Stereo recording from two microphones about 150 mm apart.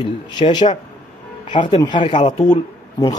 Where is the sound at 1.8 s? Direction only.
30° left (ahead or behind).